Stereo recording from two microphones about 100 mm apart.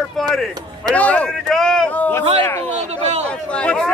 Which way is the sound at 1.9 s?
15° left (ahead or behind).